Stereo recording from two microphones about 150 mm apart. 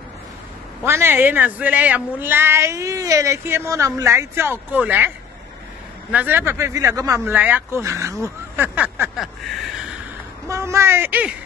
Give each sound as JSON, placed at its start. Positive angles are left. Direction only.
{"t": 0.8, "sound": "a woman's voice", "side_deg": -15}
{"t": 6.1, "sound": "speech", "side_deg": -15}
{"t": 7.2, "sound": "a woman's voice", "side_deg": -10}
{"t": 9.1, "sound": "a sound", "side_deg": -5}
{"t": 10.5, "sound": "a woman's voice", "side_deg": -20}